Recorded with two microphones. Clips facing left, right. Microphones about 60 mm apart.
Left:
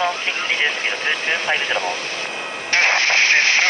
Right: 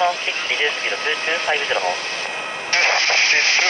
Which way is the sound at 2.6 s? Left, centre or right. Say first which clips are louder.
Left 1 dB; left.